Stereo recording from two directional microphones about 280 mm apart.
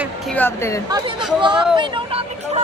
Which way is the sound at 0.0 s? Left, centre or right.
Centre.